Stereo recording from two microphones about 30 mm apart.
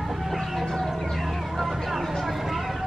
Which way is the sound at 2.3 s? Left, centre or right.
Centre.